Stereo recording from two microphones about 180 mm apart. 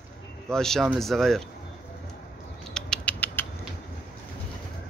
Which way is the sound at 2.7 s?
5° left (ahead or behind).